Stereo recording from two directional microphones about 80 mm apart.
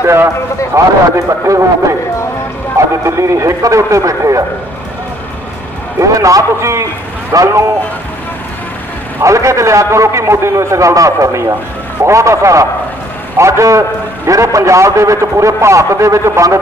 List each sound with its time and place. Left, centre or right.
0.0 s a man's voice: right
2.8 s a man's voice: right
5.9 s a man's voice: right
9.2 s a man's voice: right